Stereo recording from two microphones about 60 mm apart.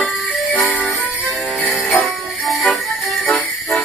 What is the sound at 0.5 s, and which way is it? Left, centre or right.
Music, left.